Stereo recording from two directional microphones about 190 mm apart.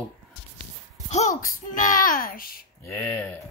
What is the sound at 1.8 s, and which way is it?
Speech, 45° left (ahead or behind).